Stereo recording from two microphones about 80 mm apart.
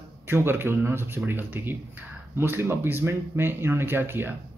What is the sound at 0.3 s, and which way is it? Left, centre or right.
Speech, right.